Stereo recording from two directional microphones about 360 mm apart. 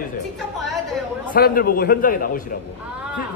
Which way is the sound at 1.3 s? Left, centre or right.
Left.